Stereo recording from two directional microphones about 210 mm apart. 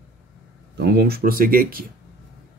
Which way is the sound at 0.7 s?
50° right (ahead or behind).